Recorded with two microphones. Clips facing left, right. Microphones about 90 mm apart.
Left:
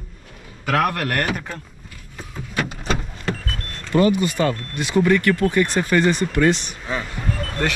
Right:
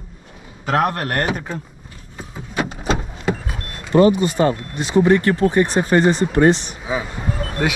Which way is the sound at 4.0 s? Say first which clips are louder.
Right 4 dB; 25° right (ahead or behind).